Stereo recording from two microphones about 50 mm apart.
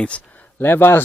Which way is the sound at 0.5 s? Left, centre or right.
Left.